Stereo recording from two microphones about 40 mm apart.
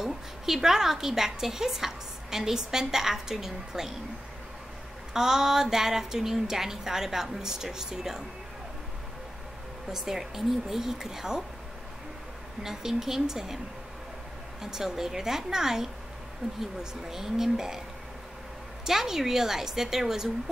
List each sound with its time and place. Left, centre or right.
0.0 s a woman's voice: centre
5.1 s a woman's voice: centre
9.8 s a woman's voice: centre
12.6 s a woman's voice: centre
14.6 s a woman's voice: centre
17.1 s a woman's voice: centre
18.9 s a woman's voice: centre